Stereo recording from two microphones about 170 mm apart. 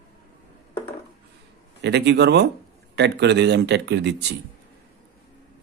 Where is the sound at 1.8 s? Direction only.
90° right.